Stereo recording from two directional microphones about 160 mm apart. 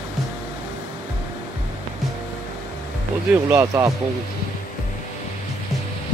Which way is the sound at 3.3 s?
15° right (ahead or behind).